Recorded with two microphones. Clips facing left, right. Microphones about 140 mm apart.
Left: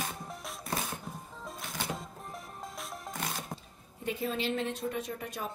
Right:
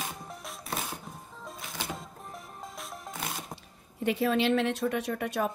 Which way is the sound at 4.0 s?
80° right.